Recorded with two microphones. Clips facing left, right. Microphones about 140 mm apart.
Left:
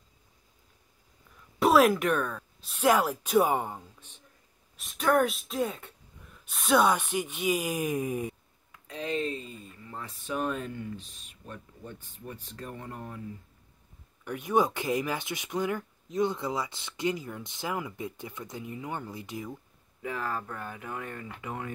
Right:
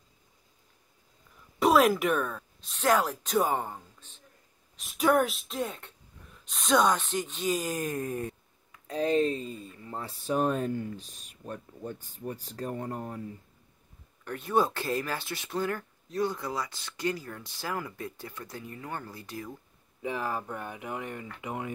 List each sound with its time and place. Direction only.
1.6 s speech: centre (ahead or behind)
2.7 s speech: 10° left (ahead or behind)
4.7 s speech: 5° right (ahead or behind); by 8.4 s 10° left (ahead or behind)
8.8 s speech: 40° right (ahead or behind)
14.2 s speech: 15° left (ahead or behind)
20.0 s speech: 20° right (ahead or behind)